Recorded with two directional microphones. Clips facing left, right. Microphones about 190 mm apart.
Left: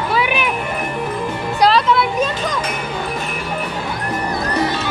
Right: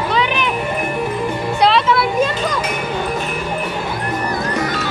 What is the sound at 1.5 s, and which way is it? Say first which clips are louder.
Music: left 1 dB; centre (ahead or behind).